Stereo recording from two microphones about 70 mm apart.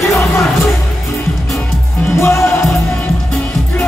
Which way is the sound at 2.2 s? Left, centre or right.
Left.